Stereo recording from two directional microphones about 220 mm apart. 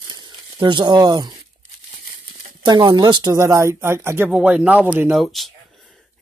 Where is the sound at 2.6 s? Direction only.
20° right (ahead or behind); by 5.5 s centre (ahead or behind).